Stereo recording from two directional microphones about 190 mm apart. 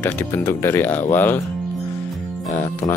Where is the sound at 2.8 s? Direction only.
20° left (ahead or behind).